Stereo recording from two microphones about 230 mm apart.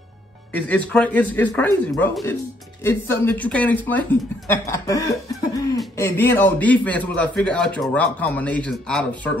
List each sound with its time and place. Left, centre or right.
0.5 s a man's voice: centre